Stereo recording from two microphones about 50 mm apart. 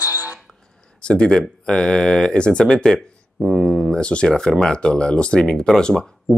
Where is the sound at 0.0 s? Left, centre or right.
Right.